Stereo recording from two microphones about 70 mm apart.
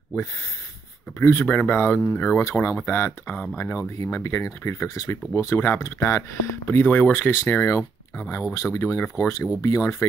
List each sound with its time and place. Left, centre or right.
1.2 s speech: left
2.5 s speech: left
3.7 s speech: left